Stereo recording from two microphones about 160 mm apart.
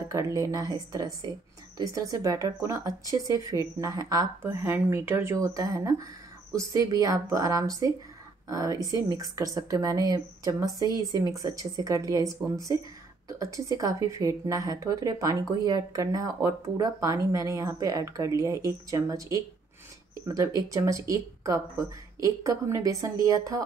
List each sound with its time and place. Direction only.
0.1 s a woman's voice: 20° right (ahead or behind)